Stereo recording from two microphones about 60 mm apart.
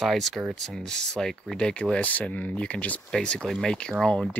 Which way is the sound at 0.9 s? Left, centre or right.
Centre.